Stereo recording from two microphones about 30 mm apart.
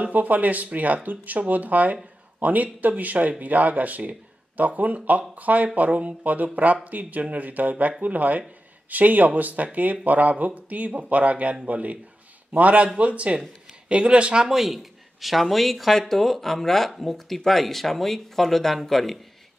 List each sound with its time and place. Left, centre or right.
0.1 s a man's voice: right
14.4 s speech: centre